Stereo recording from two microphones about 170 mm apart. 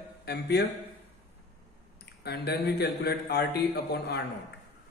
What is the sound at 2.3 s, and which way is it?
A man's voice, 70° left (ahead or behind).